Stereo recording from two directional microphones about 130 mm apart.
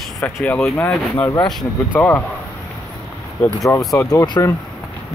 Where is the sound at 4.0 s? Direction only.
30° left (ahead or behind).